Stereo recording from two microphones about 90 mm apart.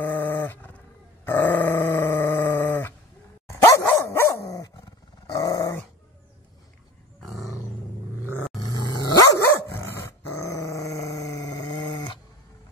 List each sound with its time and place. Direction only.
0.0 s wild animals: 20° left (ahead or behind)
1.2 s grunt: 25° left (ahead or behind)
3.6 s dog: 30° left (ahead or behind)
7.2 s roar: centre (ahead or behind)
8.7 s dog: 45° left (ahead or behind)
9.5 s dog: 30° left (ahead or behind); by 12.2 s 55° left (ahead or behind)